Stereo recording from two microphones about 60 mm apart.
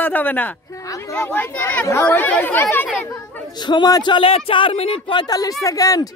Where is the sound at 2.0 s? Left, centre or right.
Left.